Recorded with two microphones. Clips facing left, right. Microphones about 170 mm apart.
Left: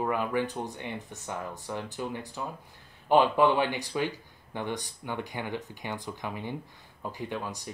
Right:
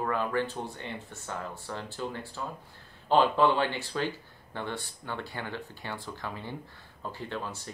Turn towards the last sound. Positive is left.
turn(degrees=15)  # may be behind; listen again after turning